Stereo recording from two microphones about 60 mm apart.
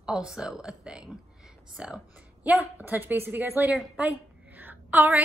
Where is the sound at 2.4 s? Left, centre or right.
Right.